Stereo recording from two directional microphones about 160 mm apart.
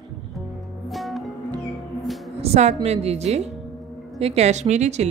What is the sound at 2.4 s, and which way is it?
A woman's voice, 45° right (ahead or behind).